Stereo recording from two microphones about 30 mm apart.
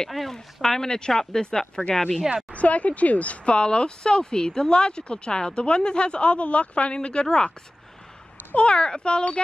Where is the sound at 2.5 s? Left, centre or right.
Left.